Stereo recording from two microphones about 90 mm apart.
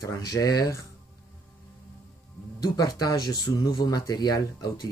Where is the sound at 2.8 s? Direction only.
45° left (ahead or behind).